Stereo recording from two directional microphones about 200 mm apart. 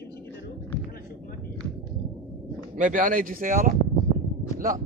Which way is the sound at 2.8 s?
40° right (ahead or behind).